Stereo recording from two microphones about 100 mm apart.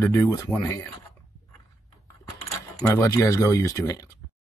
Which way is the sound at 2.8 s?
30° left (ahead or behind).